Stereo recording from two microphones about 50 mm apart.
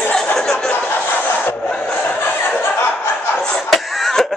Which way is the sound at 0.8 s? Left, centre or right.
Left.